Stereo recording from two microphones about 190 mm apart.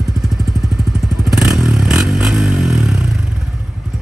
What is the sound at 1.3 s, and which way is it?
Vehicle, 5° right (ahead or behind).